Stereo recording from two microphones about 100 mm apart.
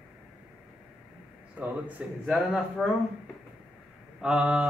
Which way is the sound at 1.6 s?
15° right (ahead or behind).